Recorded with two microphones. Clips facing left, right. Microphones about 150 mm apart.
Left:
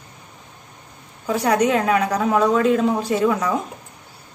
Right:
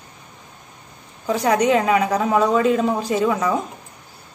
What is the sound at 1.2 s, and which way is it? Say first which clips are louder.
A woman's voice: even; centre (ahead or behind).